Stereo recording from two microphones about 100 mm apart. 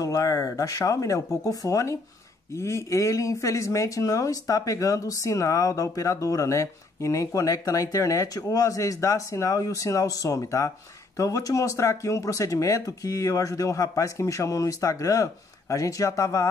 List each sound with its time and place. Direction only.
0.0 s speech: 35° left (ahead or behind)